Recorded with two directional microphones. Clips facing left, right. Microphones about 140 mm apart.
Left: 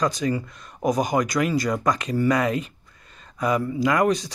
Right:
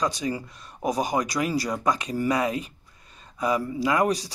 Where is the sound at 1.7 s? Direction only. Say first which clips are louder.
Left 3 dB; 10° right (ahead or behind).